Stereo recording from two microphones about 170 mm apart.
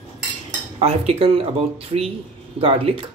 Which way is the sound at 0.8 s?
35° right (ahead or behind).